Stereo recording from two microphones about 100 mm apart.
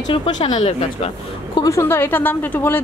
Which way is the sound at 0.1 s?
50° left (ahead or behind).